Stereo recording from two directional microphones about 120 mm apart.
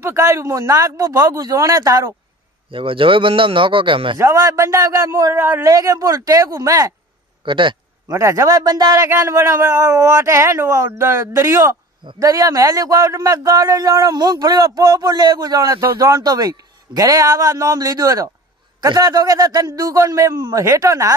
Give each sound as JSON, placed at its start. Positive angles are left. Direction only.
{"t": 0.0, "sound": "a man's voice", "side_deg": -20}
{"t": 2.7, "sound": "a man's voice", "side_deg": -50}
{"t": 4.2, "sound": "a man's voice", "side_deg": -25}
{"t": 7.4, "sound": "a man's voice", "side_deg": -45}
{"t": 8.1, "sound": "a man's voice", "side_deg": -25}